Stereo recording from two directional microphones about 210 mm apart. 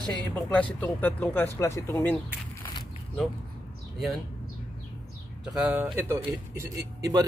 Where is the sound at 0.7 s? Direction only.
10° left (ahead or behind).